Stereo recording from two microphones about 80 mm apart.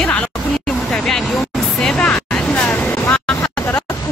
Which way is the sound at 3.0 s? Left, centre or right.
Left.